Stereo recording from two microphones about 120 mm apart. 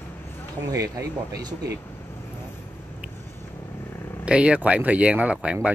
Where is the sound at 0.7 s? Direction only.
30° right (ahead or behind).